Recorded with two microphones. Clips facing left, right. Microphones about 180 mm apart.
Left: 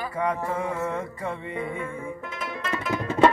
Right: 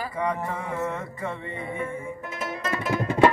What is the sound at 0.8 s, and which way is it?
Music, 10° left (ahead or behind).